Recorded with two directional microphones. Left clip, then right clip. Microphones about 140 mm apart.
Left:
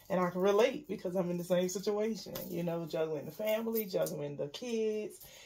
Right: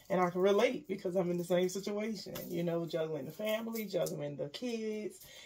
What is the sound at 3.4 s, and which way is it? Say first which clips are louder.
Speech: left 4 dB; 15° left (ahead or behind).